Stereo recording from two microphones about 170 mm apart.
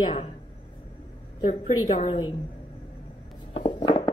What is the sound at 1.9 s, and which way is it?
Speech, 30° left (ahead or behind).